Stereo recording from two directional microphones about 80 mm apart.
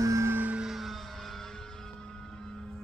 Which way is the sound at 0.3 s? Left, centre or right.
Right.